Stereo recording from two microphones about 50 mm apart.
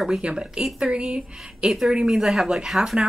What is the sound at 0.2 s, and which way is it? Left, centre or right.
Speech, centre.